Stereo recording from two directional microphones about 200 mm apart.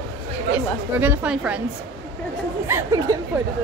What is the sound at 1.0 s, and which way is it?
Speech, 5° right (ahead or behind).